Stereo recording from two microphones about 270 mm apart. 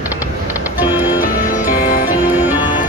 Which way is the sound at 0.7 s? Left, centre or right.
Centre.